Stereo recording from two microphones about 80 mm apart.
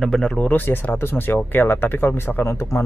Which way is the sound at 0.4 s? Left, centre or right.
Left.